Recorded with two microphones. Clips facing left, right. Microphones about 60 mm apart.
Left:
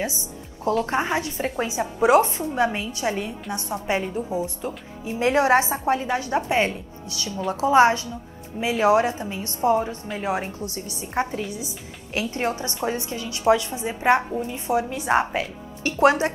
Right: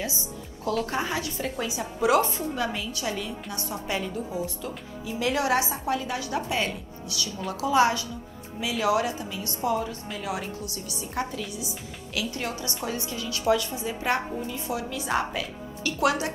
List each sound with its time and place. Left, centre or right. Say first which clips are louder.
0.7 s a woman's voice: left 5 dB; left